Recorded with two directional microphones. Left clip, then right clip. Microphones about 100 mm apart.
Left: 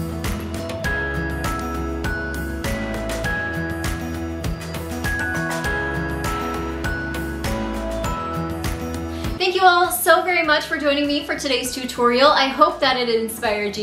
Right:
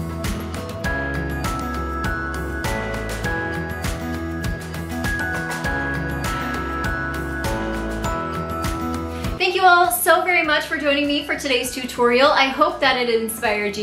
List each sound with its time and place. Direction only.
9.4 s a woman's voice: 5° left (ahead or behind)